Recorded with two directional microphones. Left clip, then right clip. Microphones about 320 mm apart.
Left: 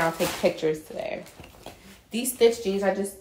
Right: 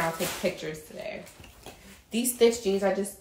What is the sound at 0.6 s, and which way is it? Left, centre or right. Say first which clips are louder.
Speech: left 11 dB; centre.